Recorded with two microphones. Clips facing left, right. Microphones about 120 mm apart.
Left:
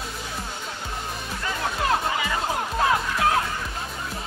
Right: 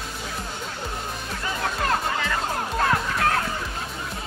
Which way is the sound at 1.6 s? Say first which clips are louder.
Left 1 dB; 5° left (ahead or behind).